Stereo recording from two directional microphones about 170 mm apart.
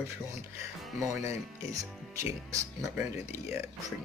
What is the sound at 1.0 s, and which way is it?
Speech, 20° right (ahead or behind).